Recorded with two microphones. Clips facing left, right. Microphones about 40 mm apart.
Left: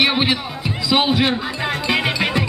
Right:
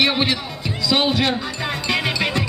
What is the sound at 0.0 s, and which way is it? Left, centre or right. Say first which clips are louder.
Speech: left 1 dB; centre.